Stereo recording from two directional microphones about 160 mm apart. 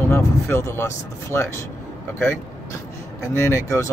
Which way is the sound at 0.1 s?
15° left (ahead or behind).